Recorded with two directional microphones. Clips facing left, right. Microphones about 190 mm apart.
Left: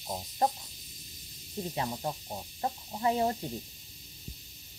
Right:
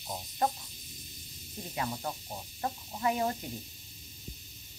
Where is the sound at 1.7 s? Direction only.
25° left (ahead or behind).